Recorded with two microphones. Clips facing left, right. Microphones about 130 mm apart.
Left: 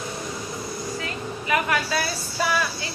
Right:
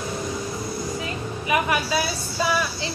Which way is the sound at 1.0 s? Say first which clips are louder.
Right 1 dB; 20° right (ahead or behind).